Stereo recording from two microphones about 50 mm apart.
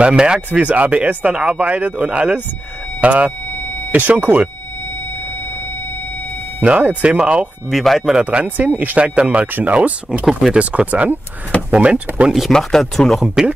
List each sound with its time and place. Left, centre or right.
0.0 s speech: centre
0.5 s speech: right
6.6 s speech: right
7.7 s speech: centre
8.0 s speech: centre
8.5 s speech: right
12.3 s speech: centre